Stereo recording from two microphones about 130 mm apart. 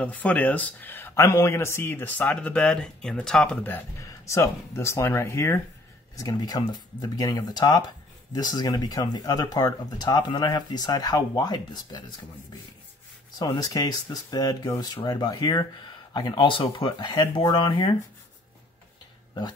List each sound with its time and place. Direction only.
0.0 s speech: 10° left (ahead or behind)
4.3 s speech: 20° left (ahead or behind)
13.4 s speech: 30° left (ahead or behind)